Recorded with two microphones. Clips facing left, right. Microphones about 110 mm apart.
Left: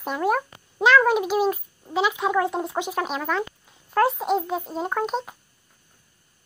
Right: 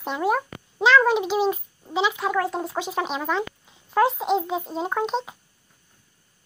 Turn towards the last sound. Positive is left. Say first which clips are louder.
# right 1 dB
turn(degrees=5)  # may be behind; listen again after turning